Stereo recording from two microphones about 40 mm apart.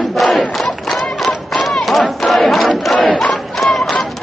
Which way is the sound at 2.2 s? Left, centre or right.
Centre.